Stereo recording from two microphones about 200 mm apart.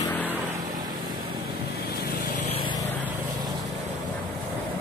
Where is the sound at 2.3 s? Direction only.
35° left (ahead or behind).